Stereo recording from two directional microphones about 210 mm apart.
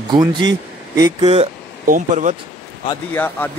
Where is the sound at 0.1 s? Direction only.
20° right (ahead or behind); by 2.3 s 35° right (ahead or behind).